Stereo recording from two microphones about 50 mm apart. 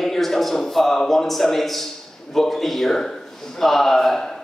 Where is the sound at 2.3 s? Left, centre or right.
Centre.